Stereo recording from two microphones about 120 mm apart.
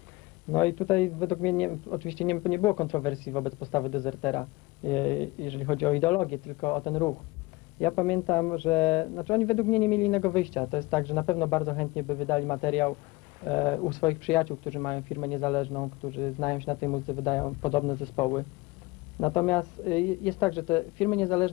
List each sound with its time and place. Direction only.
0.5 s a man's voice: 15° left (ahead or behind)
19.2 s a man's voice: 10° left (ahead or behind)